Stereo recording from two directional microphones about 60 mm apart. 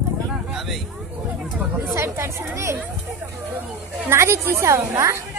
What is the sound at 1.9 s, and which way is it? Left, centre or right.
Speech, right.